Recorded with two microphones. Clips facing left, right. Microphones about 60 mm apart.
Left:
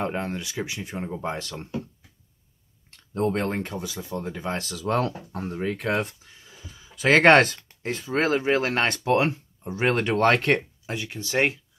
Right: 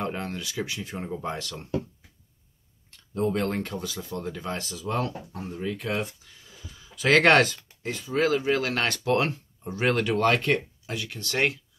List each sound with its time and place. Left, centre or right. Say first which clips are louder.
0.0 s speech: left 3 dB; left
3.3 s speech: left 1 dB; left
4.6 s speech: left 5 dB; left
5.5 s speech: left 4 dB; left
6.8 s a man's voice: left 2 dB; left
7.4 s speech: left 2 dB; left
10.0 s speech: left 5 dB; left
10.9 s speech: left 3 dB; left